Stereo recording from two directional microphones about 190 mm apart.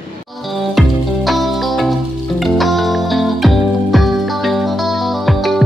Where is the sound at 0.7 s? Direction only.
Centre (ahead or behind).